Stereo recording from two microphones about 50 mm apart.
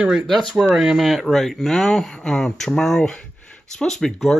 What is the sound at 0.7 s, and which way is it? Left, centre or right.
Speech, centre.